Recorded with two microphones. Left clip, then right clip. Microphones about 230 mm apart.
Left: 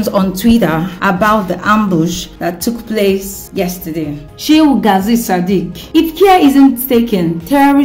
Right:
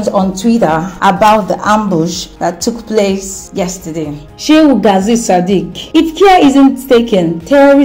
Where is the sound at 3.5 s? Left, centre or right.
Centre.